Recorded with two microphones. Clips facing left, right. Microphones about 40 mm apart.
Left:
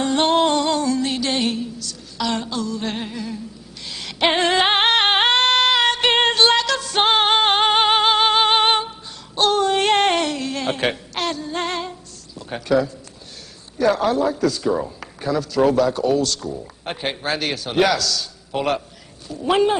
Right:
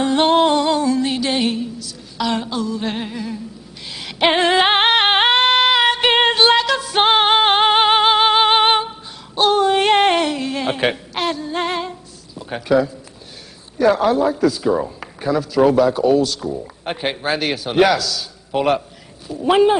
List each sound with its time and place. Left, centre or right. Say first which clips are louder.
0.0 s music: right 3 dB; centre
4.0 s female singing: right 3 dB; centre
5.7 s music: right 2 dB; centre
13.7 s a man's voice: right 3 dB; centre